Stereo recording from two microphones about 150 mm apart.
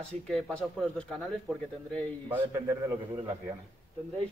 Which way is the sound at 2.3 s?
20° right (ahead or behind).